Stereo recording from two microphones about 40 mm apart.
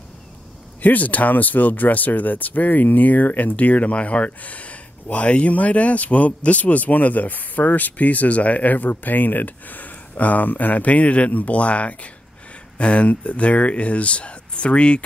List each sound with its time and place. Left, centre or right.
0.8 s speech: left